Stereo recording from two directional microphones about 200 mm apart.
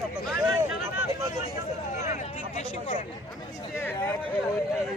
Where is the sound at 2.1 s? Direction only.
35° left (ahead or behind).